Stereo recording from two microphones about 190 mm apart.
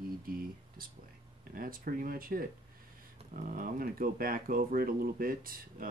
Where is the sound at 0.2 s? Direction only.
50° right (ahead or behind).